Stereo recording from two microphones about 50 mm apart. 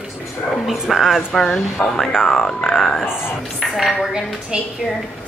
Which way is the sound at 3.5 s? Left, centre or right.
Centre.